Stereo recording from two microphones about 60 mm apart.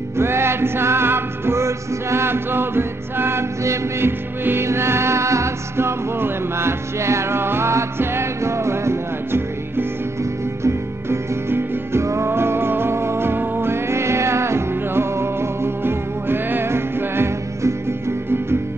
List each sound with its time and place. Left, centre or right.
0.2 s music: right